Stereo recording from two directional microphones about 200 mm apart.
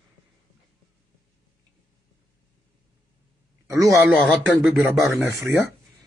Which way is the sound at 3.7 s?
15° right (ahead or behind).